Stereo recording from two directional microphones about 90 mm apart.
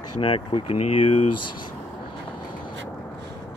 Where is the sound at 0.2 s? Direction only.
80° left.